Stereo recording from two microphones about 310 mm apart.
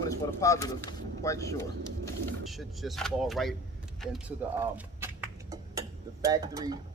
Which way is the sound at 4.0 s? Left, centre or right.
Centre.